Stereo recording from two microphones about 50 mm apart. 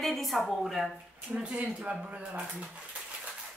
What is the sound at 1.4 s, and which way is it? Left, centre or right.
Speech, right.